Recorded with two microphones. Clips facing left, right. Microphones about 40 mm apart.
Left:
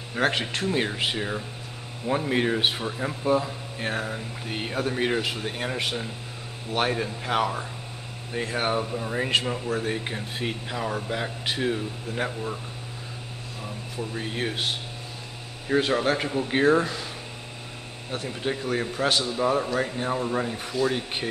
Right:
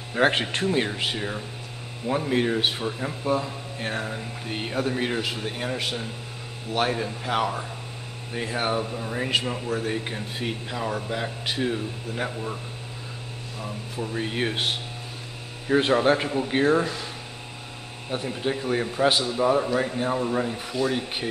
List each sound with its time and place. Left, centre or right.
0.2 s speech: right
0.7 s speech: centre
13.6 s speech: centre
15.9 s speech: centre
18.1 s speech: centre
19.0 s speech: centre
19.3 s speech: centre